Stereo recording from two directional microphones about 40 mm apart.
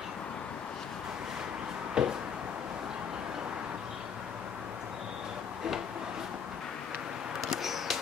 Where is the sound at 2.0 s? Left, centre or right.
Centre.